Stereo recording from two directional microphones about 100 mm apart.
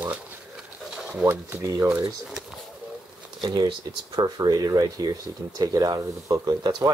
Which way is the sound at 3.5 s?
50° right (ahead or behind).